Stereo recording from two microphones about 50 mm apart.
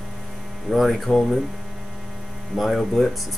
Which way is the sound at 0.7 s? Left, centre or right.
Centre.